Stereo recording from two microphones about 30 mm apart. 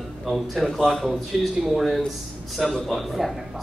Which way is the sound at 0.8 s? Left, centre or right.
Centre.